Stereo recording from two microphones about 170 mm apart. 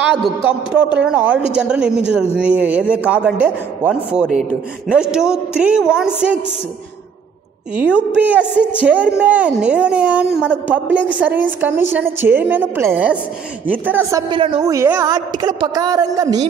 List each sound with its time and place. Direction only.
0.1 s a woman's voice: 5° right (ahead or behind)
7.7 s a woman's voice: 5° right (ahead or behind)
14.3 s speech: 30° right (ahead or behind)